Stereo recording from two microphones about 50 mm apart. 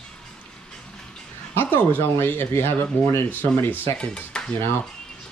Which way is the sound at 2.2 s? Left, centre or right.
Left.